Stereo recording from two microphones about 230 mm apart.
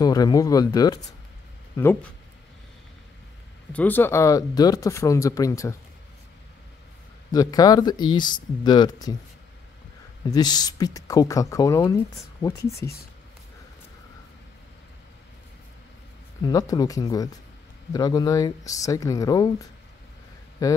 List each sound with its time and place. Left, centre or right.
0.0 s speech: centre
3.7 s speech: centre
7.3 s speech: centre
10.3 s speech: centre
16.4 s speech: centre
20.6 s speech: centre